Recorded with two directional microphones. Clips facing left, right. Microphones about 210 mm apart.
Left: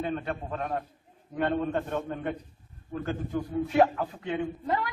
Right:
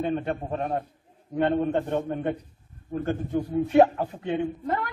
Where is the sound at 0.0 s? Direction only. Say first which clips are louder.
Right 4 dB; 20° right (ahead or behind).